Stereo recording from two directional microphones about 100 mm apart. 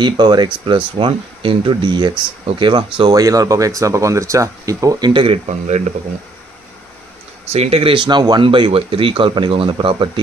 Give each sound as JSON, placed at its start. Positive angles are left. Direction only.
{"t": 0.0, "sound": "speech", "side_deg": -50}
{"t": 3.1, "sound": "speech", "side_deg": -35}
{"t": 5.1, "sound": "speech", "side_deg": -70}
{"t": 7.5, "sound": "speech", "side_deg": -85}